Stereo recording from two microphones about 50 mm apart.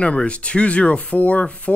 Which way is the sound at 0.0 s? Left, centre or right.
Left.